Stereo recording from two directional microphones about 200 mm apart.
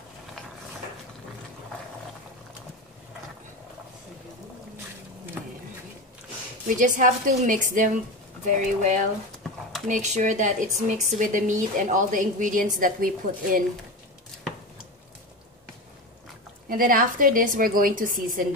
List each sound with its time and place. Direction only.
6.7 s speech: 40° right (ahead or behind)
16.6 s a woman's voice: 45° right (ahead or behind)